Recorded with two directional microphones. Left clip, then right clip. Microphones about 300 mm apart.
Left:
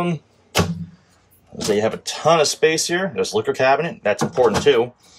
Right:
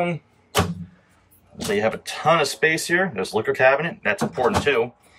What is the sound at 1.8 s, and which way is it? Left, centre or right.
Speech, centre.